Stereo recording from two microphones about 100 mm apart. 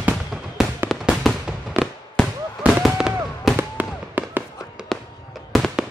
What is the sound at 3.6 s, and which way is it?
Fireworks, 20° right (ahead or behind).